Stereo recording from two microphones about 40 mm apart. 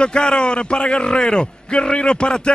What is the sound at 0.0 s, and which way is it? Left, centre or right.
A man's voice, left.